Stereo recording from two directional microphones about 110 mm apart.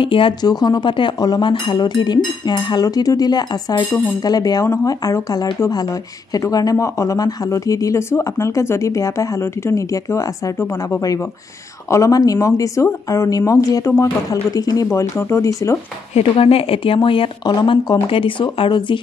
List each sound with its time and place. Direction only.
0.0 s speech: 50° left (ahead or behind); by 14.9 s 35° left (ahead or behind)
14.9 s speech: 25° left (ahead or behind)
16.2 s speech: 60° left (ahead or behind)
17.6 s speech: 40° left (ahead or behind)
18.1 s speech: 50° left (ahead or behind)